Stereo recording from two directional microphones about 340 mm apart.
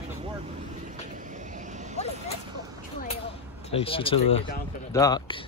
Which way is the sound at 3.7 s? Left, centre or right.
Centre.